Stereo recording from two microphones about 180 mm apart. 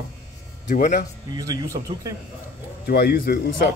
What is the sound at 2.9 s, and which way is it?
Speech, 60° left (ahead or behind).